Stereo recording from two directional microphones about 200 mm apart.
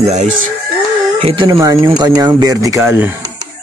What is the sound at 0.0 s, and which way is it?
Speech, 35° right (ahead or behind).